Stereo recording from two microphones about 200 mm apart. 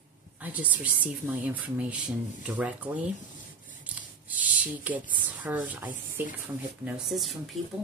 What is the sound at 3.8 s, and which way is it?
Scissors, 5° right (ahead or behind).